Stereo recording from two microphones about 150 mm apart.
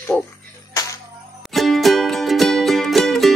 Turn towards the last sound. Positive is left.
turn(degrees=0)  # may be behind; listen again after turning